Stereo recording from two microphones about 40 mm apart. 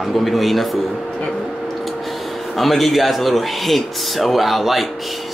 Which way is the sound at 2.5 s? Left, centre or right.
Centre.